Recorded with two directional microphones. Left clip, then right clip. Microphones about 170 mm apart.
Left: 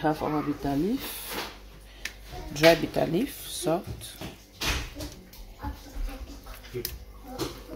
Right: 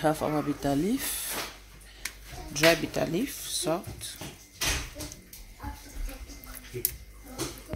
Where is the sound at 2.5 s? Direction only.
Centre (ahead or behind).